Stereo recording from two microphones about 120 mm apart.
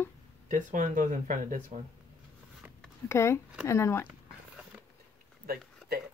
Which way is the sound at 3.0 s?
20° left (ahead or behind).